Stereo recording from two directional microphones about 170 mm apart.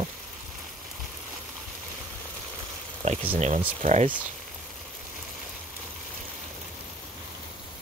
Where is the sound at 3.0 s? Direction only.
35° right (ahead or behind).